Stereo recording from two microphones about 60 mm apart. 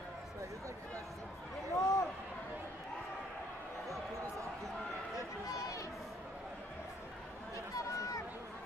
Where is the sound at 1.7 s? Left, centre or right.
Left.